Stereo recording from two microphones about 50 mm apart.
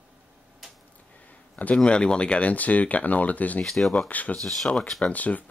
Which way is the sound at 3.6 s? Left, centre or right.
Centre.